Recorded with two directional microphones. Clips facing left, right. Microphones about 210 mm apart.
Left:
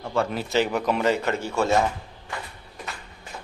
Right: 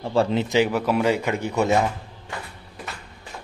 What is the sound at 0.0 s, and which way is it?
Speech, 30° right (ahead or behind).